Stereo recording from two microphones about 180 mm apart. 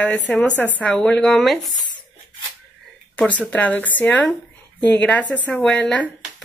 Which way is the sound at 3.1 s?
10° left (ahead or behind).